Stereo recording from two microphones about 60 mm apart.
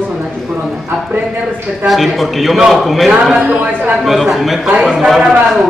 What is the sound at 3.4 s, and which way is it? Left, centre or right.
Speech, right.